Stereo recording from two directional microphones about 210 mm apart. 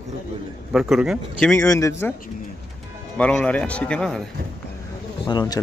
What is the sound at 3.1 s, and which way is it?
Speech, 5° left (ahead or behind).